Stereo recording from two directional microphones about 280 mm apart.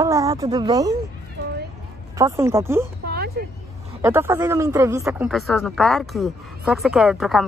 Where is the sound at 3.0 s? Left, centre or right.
Right.